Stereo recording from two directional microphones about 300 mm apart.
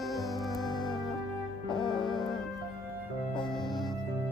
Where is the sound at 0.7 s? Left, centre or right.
Centre.